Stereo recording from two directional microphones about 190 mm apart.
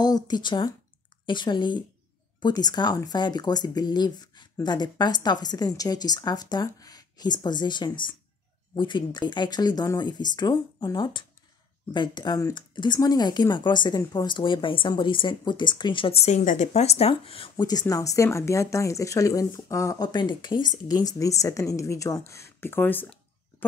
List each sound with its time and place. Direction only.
0.0 s speech: 20° left (ahead or behind)